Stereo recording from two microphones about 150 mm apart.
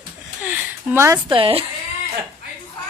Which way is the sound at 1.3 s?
40° right (ahead or behind).